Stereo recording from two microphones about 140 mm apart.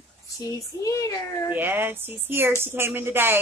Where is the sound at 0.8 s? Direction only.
25° left (ahead or behind).